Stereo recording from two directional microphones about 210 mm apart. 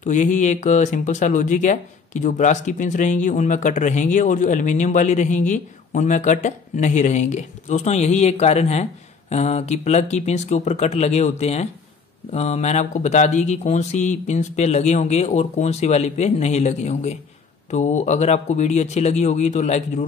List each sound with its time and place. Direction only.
0.0 s speech: 35° left (ahead or behind)